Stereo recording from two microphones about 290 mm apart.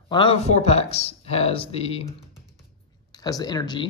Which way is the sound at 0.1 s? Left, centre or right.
Centre.